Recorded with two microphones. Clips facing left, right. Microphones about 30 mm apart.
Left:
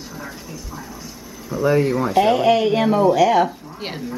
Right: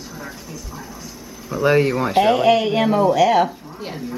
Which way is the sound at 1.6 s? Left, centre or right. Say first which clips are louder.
Right 1 dB; right.